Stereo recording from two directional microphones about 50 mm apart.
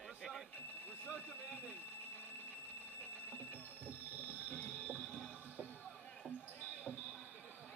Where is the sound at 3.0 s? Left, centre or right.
Left.